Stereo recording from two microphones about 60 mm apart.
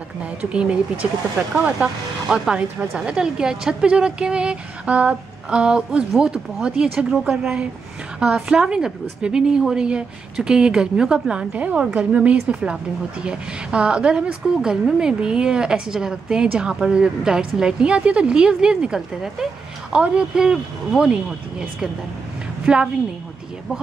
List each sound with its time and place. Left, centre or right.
0.5 s a woman's voice: centre